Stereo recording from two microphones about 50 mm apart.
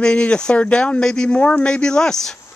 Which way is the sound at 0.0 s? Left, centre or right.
Left.